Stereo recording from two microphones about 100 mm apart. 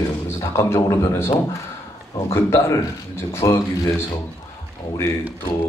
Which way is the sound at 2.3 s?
30° left (ahead or behind).